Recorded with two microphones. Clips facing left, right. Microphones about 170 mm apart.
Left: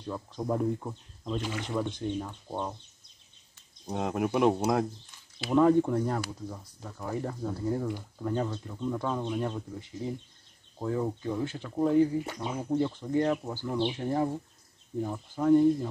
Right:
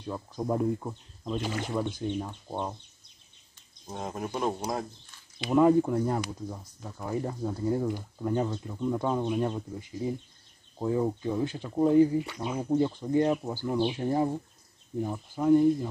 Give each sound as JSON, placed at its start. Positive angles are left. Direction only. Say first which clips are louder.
{"t": 0.0, "sound": "speech", "louder": "right 1 dB", "side_deg": -10}
{"t": 3.8, "sound": "speech", "louder": "left 5 dB", "side_deg": 70}
{"t": 5.5, "sound": "speech", "louder": "right 1 dB", "side_deg": -10}